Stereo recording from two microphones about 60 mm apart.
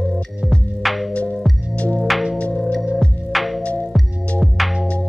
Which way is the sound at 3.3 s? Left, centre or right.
Centre.